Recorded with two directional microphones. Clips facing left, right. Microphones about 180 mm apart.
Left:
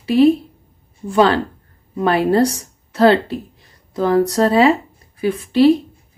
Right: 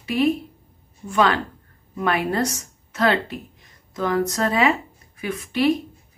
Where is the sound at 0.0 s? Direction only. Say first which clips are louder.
Left 8 dB; 30° left (ahead or behind).